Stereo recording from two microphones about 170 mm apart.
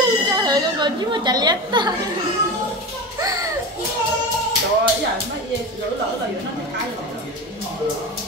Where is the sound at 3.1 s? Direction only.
20° right (ahead or behind).